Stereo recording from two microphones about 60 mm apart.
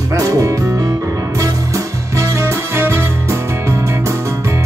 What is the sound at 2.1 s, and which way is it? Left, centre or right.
Music, right.